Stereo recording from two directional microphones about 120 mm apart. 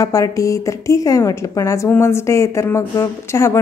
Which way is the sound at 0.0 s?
30° left (ahead or behind).